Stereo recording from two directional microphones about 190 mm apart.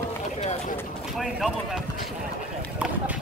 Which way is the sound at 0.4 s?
35° left (ahead or behind).